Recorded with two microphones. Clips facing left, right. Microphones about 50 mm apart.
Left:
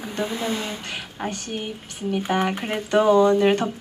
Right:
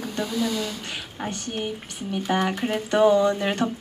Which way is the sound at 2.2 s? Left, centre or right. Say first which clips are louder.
Right 1 dB; left.